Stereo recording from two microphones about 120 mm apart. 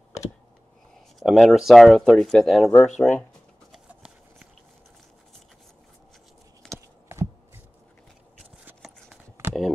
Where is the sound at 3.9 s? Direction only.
10° right (ahead or behind).